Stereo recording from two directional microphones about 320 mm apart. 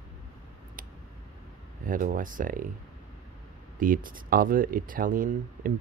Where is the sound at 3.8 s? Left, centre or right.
Right.